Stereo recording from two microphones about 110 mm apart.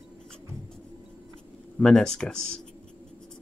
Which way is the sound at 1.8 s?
5° left (ahead or behind).